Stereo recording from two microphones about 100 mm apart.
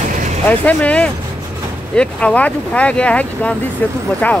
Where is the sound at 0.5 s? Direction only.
15° left (ahead or behind).